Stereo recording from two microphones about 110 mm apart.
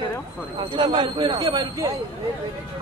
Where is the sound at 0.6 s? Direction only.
50° right (ahead or behind).